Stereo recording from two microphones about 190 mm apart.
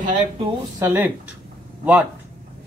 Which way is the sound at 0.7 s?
10° right (ahead or behind).